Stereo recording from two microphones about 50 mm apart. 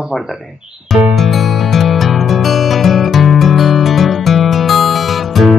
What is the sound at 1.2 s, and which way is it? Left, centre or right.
Music, centre.